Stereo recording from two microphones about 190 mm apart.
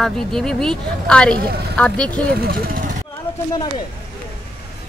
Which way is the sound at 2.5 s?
50° right (ahead or behind).